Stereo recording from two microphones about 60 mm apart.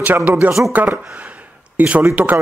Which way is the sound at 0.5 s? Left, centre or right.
Centre.